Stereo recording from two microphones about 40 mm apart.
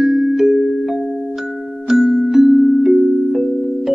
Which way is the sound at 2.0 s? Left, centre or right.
Centre.